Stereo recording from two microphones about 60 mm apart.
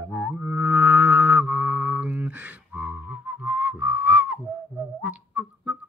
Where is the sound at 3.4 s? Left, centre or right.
Right.